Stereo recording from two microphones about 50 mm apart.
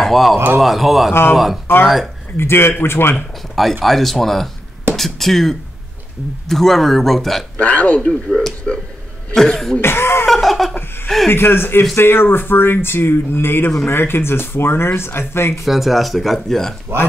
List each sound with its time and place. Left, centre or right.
0.0 s speech: centre
2.3 s speech: left
3.8 s speech: centre
7.5 s speech: left
8.0 s speech: centre
9.8 s cough: left
10.2 s laughter: centre
11.2 s speech: left
15.6 s speech: centre